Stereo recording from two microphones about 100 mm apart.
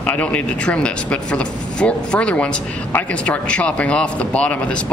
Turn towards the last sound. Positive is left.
turn(degrees=10)  # may be behind; listen again after turning